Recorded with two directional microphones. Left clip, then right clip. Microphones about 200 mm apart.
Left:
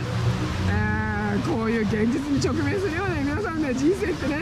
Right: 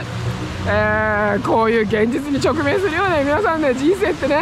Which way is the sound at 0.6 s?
20° left (ahead or behind).